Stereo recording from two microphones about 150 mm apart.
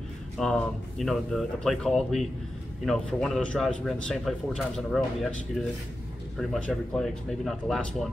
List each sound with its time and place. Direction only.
0.4 s a man's voice: 5° left (ahead or behind)